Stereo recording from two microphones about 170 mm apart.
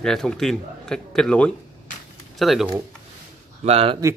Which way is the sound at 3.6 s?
35° right (ahead or behind).